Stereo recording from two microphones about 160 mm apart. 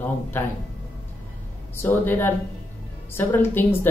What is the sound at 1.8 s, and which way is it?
Speech, 15° left (ahead or behind).